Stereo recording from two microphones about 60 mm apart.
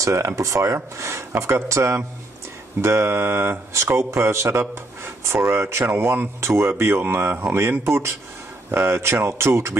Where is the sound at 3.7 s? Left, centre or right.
Right.